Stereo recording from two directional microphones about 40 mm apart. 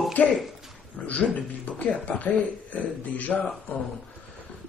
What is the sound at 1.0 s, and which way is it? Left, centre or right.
Speech, left.